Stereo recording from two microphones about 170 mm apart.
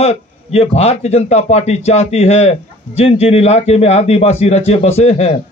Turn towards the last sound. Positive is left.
turn(degrees=40)  # may be behind; listen again after turning